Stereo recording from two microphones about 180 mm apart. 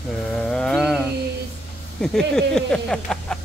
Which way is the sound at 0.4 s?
5° left (ahead or behind).